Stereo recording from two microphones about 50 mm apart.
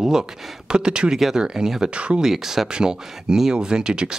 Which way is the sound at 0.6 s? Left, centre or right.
Centre.